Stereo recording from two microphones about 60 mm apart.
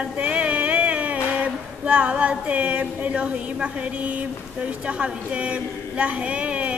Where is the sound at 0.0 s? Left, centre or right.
Centre.